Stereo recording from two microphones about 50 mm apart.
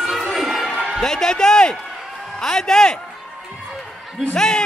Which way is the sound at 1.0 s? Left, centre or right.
Centre.